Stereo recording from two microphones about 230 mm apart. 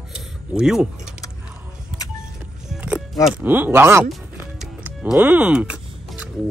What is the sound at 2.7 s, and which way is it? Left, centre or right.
Music, centre.